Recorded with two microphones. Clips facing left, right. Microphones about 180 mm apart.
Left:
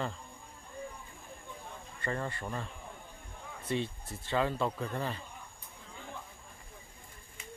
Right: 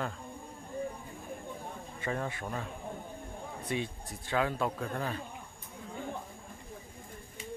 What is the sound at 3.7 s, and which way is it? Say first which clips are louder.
Speech: left 3 dB; 5° right (ahead or behind).